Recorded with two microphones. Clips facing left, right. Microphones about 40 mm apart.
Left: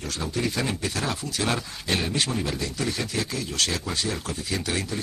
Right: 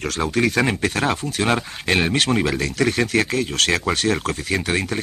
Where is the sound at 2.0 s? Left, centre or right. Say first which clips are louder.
Right 10 dB; right.